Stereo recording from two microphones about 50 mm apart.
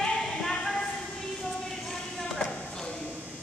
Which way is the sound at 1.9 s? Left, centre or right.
Centre.